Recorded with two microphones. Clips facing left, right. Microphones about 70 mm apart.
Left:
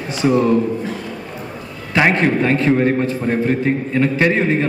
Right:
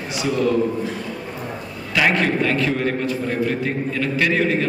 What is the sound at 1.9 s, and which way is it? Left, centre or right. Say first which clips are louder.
A man's voice: left 3 dB; left.